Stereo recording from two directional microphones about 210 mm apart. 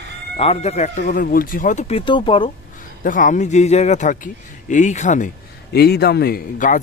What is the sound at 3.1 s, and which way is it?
Speech, 35° left (ahead or behind).